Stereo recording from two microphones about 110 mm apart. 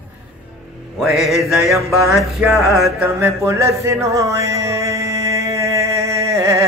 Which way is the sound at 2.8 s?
25° right (ahead or behind).